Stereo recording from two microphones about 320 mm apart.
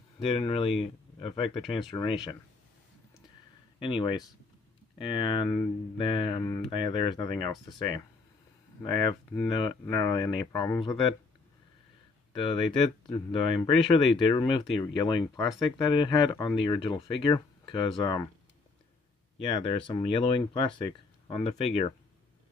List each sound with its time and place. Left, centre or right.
0.4 s speech: centre
3.8 s speech: centre
12.3 s speech: centre
19.4 s speech: centre